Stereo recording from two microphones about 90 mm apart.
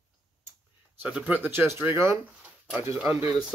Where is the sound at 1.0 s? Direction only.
10° right (ahead or behind).